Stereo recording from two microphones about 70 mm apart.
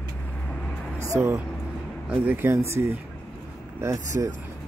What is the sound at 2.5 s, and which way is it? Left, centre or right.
Speech, right.